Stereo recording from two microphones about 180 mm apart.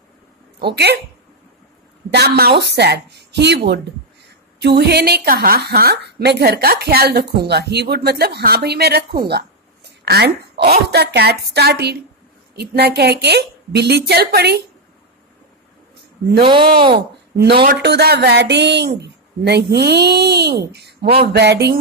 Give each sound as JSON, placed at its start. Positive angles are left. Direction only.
{"t": 0.6, "sound": "a woman's voice", "side_deg": -65}
{"t": 2.0, "sound": "a woman's voice", "side_deg": -65}
{"t": 16.4, "sound": "speech", "side_deg": -25}
{"t": 16.9, "sound": "a woman's voice", "side_deg": -60}